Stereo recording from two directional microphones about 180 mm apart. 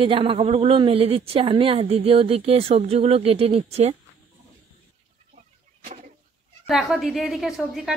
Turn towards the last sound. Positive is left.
turn(degrees=0)  # may be behind; listen again after turning